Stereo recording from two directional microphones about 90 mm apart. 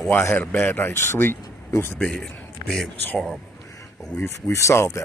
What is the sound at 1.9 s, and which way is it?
Speech, 10° left (ahead or behind).